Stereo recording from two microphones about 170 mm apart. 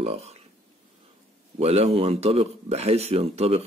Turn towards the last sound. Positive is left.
turn(degrees=-35)  # may be behind; listen again after turning